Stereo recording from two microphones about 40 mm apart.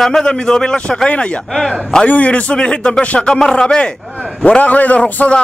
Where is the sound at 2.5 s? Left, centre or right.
Left.